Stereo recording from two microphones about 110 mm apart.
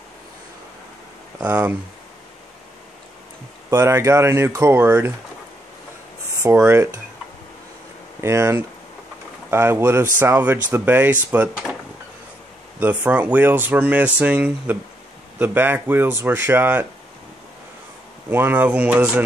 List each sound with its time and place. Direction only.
1.4 s speech: 15° right (ahead or behind)
3.7 s speech: 25° right (ahead or behind)
6.4 s speech: 25° right (ahead or behind)
8.2 s speech: 25° right (ahead or behind)
12.8 s speech: 15° right (ahead or behind)
18.3 s speech: 20° right (ahead or behind)